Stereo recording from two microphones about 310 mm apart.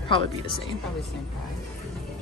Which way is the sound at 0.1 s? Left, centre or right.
Centre.